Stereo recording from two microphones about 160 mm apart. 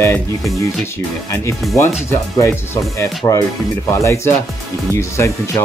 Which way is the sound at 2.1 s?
15° left (ahead or behind).